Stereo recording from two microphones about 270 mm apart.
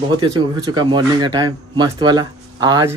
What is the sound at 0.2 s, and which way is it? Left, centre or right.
Speech, centre.